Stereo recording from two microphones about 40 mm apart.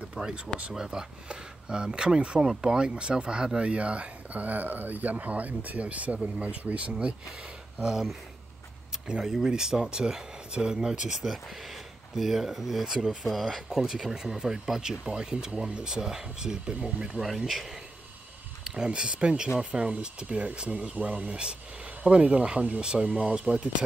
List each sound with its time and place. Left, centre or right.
0.1 s a sound: centre
0.7 s speech: centre
7.8 s speech: centre
9.2 s speech: centre
13.2 s speech: centre
17.2 s speech: centre
18.9 s speech: right
23.4 s speech: right